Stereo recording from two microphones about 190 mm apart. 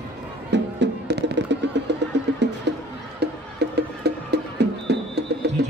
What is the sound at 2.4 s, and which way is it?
Chicken, 65° right (ahead or behind).